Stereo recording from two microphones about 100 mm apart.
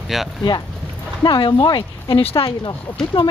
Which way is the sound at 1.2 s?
55° left (ahead or behind).